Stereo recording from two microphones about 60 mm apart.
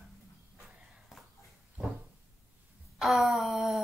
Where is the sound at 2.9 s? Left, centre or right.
Centre.